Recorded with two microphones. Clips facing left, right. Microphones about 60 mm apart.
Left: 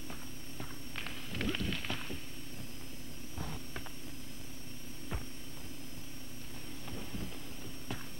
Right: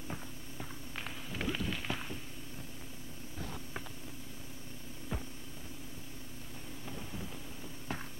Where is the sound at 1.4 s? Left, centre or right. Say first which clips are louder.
Even; centre.